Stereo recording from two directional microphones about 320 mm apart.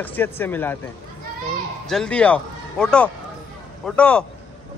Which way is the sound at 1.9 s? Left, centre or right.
Centre.